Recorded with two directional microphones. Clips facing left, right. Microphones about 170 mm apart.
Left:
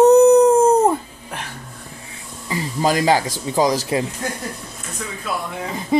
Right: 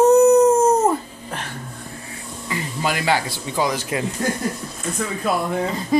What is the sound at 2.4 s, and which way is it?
Speech, 35° left (ahead or behind).